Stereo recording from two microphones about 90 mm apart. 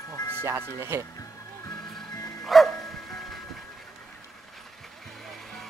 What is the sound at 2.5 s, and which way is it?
Music, centre (ahead or behind).